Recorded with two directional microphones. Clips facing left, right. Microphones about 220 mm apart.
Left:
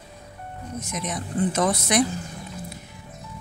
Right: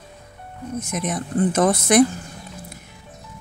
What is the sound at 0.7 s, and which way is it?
A woman's voice, 50° right (ahead or behind).